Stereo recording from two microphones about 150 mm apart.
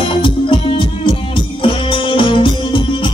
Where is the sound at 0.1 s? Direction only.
35° left (ahead or behind).